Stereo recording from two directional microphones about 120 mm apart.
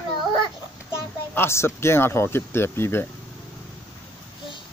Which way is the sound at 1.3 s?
20° left (ahead or behind).